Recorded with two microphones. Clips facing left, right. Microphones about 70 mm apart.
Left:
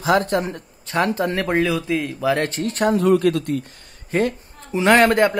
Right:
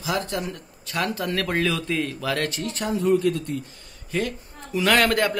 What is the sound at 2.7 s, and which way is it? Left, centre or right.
Speech, left.